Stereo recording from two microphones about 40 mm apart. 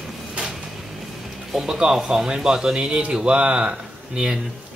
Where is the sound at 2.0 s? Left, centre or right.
Centre.